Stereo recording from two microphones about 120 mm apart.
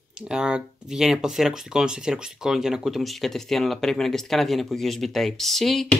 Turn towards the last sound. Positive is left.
turn(degrees=0)  # may be behind; listen again after turning